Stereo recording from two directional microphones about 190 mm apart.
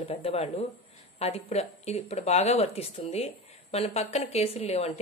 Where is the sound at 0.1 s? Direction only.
30° left (ahead or behind).